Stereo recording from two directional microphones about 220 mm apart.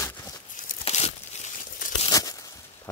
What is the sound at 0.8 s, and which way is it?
Tearing, 30° left (ahead or behind).